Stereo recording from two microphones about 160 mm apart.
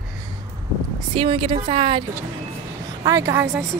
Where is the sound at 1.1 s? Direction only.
30° right (ahead or behind).